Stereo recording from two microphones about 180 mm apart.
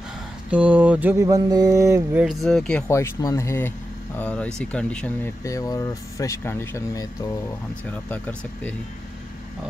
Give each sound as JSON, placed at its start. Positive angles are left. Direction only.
{"t": 0.5, "sound": "mantra", "side_deg": -5}
{"t": 2.2, "sound": "speech", "side_deg": 0}
{"t": 2.9, "sound": "speech", "side_deg": 15}
{"t": 5.4, "sound": "speech", "side_deg": 20}